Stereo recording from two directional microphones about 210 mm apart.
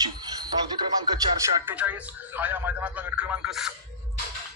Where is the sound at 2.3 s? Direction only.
10° right (ahead or behind).